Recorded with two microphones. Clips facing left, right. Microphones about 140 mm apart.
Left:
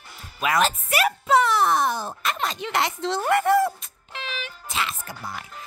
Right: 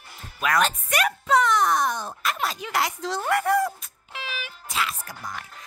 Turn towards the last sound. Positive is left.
turn(degrees=0)  # may be behind; listen again after turning